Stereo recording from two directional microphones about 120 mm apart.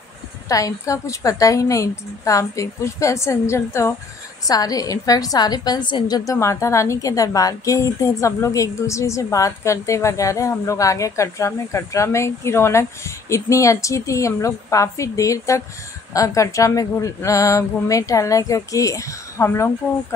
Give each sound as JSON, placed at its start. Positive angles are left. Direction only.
{"t": 0.5, "sound": "a woman's voice", "side_deg": 25}